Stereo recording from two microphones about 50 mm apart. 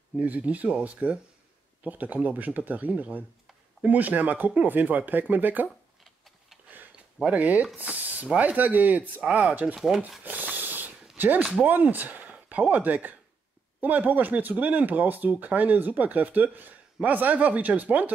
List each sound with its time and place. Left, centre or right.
0.2 s speech: right
6.7 s a sound: right
8.4 s speech: right
9.2 s speech: right
9.8 s speech: centre
10.2 s a sound: right
11.6 s speech: right